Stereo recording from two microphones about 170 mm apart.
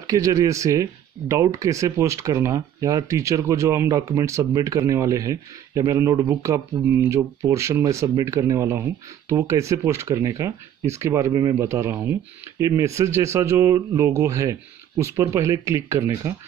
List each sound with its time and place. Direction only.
0.0 s speech: 20° right (ahead or behind)